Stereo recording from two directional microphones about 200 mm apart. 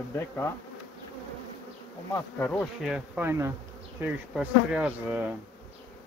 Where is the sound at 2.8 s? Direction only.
5° right (ahead or behind).